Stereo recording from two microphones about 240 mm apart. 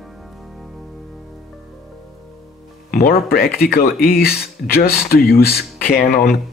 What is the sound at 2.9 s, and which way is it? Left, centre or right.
Speech, left.